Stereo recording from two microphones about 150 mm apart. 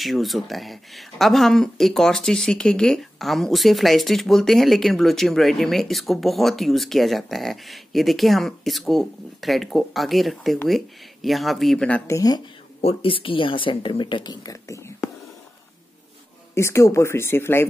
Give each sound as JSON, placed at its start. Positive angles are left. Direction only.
{"t": 0.0, "sound": "speech", "side_deg": 0}
{"t": 12.1, "sound": "speech", "side_deg": 25}
{"t": 12.8, "sound": "speech", "side_deg": 35}
{"t": 16.5, "sound": "speech", "side_deg": 20}